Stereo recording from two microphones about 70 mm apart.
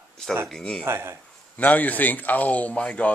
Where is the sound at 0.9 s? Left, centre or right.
Right.